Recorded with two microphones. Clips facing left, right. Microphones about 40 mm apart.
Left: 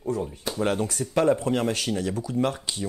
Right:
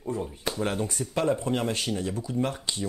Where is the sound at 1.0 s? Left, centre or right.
Left.